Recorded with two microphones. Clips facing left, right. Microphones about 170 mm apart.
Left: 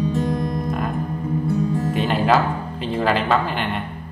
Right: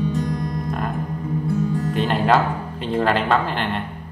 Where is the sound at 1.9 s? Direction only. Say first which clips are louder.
Right 1 dB; 5° left (ahead or behind).